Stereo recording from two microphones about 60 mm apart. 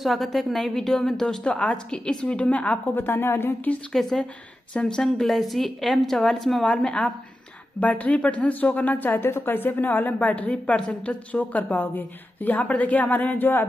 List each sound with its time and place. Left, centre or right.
0.0 s a woman's voice: centre
1.2 s a woman's voice: centre
2.9 s a woman's voice: left
3.9 s a woman's voice: centre
5.2 s a woman's voice: centre
6.6 s a woman's voice: centre; by 13.7 s left